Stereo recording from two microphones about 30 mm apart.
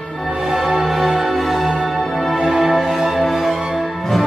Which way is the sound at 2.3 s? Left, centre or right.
Right.